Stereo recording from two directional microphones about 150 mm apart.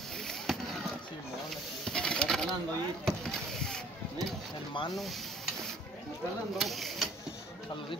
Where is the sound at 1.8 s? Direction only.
5° left (ahead or behind).